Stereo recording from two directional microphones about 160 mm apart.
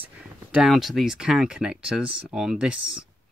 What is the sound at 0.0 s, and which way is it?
Speech, 5° right (ahead or behind).